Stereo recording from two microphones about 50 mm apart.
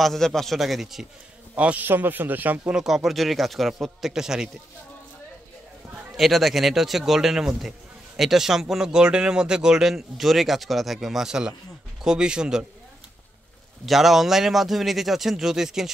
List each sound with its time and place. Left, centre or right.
0.0 s a man's voice: centre
0.6 s speech: centre
1.6 s a man's voice: right
1.9 s speech: right
2.6 s speech: centre
6.1 s speech: centre
13.8 s speech: centre